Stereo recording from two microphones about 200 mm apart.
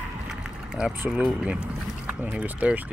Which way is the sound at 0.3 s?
5° right (ahead or behind).